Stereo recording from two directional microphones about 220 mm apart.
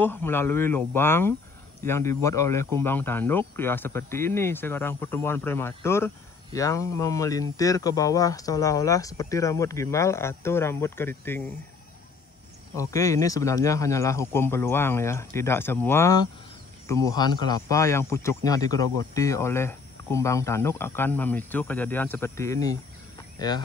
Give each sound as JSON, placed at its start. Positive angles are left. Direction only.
{"t": 0.0, "sound": "speech", "side_deg": 10}
{"t": 12.7, "sound": "speech", "side_deg": 15}